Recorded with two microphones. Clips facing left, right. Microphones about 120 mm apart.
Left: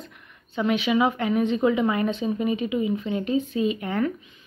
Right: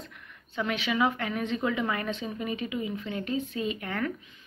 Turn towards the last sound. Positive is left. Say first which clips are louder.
# left 7 dB
turn(degrees=20)  # may be behind; listen again after turning